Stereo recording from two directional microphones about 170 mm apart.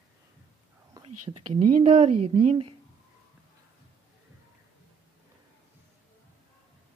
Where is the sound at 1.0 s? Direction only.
35° right (ahead or behind).